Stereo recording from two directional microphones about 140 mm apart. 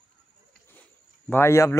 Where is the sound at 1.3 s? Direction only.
15° left (ahead or behind).